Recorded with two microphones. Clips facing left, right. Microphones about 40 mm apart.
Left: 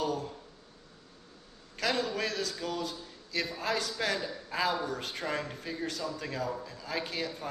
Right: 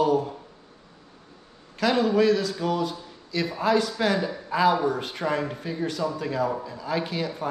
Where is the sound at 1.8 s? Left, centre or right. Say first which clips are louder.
Right 10 dB; right.